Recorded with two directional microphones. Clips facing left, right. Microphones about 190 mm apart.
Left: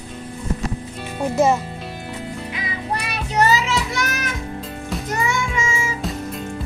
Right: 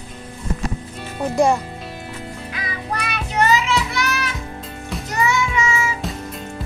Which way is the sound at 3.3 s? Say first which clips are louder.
Even; 40° left (ahead or behind).